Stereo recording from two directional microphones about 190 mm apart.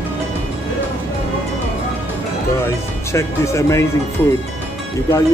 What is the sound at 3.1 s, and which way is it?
Speech, 15° left (ahead or behind).